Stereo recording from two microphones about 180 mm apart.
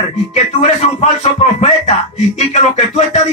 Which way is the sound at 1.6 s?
40° left (ahead or behind).